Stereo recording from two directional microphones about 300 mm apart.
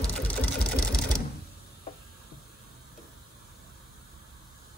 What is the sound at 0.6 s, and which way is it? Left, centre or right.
Sewing machine, left.